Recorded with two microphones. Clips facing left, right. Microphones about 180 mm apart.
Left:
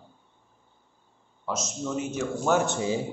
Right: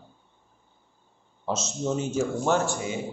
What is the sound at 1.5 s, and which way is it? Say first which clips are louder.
Speech: right 3 dB; 25° right (ahead or behind).